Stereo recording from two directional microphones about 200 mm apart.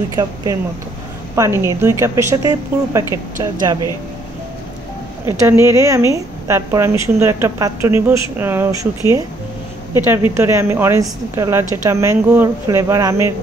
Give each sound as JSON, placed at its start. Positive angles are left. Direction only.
{"t": 0.1, "sound": "a woman's voice", "side_deg": -15}
{"t": 5.2, "sound": "a woman's voice", "side_deg": -15}
{"t": 9.9, "sound": "a woman's voice", "side_deg": -10}